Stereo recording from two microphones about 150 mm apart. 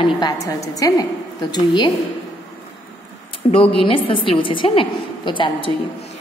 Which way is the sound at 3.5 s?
35° left (ahead or behind).